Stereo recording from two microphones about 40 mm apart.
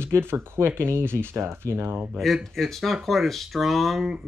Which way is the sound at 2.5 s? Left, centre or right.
Centre.